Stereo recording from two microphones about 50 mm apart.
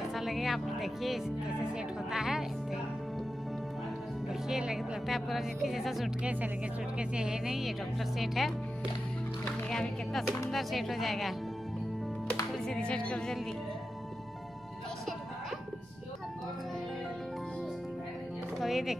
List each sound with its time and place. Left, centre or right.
0.1 s music: centre
4.3 s speech: centre
7.0 s speech: right
7.4 s speech: centre
9.7 s music: centre
10.5 s speech: centre
12.5 s music: centre
12.8 s speech: left
18.6 s music: centre